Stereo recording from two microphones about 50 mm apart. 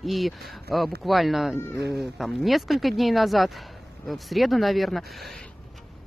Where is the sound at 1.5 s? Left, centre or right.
Left.